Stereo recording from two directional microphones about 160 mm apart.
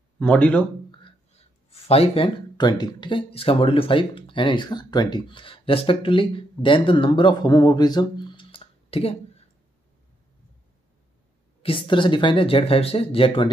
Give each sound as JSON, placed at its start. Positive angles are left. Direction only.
{"t": 0.2, "sound": "speech", "side_deg": 10}
{"t": 0.9, "sound": "speech", "side_deg": 35}
{"t": 11.6, "sound": "speech", "side_deg": 30}